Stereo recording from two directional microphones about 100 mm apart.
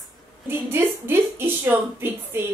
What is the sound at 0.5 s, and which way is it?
A woman's voice, 20° right (ahead or behind).